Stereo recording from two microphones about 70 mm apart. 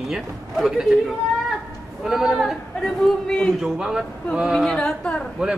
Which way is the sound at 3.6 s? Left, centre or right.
Centre.